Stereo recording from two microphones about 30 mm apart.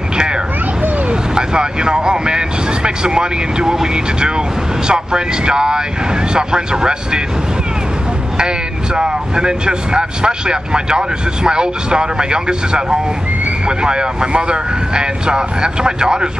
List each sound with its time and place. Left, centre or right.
1.0 s speech: right
8.4 s speech: right